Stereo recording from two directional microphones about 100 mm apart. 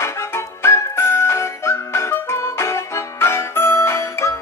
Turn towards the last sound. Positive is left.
turn(degrees=30)  # may be behind; listen again after turning